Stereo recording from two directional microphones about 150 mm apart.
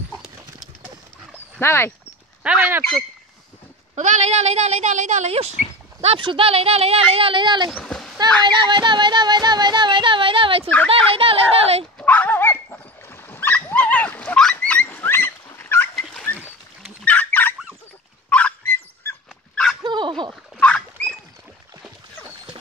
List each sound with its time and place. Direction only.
1.6 s speech: 15° left (ahead or behind)
2.4 s speech: 10° right (ahead or behind)
2.8 s speech: 5° left (ahead or behind)
3.9 s a woman's voice: 55° right (ahead or behind); by 7.7 s 30° right (ahead or behind)
7.7 s splash: 5° left (ahead or behind)
8.5 s music: 30° right (ahead or behind)
10.9 s speech: 40° right (ahead or behind)
12.0 s dog: 10° left (ahead or behind)
16.0 s rodents: 5° left (ahead or behind)
17.0 s fowl: 10° left (ahead or behind)
18.3 s dog: 10° left (ahead or behind)
19.8 s turkey: 30° right (ahead or behind)
20.5 s rodents: 10° left (ahead or behind)